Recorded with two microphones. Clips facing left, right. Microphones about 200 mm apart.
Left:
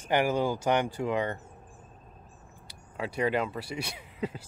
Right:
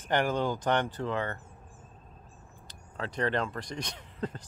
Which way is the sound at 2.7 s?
10° left (ahead or behind).